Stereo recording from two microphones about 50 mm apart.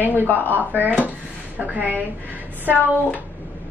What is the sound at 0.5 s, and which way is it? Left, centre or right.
Speech, right.